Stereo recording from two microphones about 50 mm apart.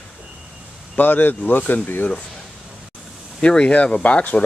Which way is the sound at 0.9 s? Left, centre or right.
Left.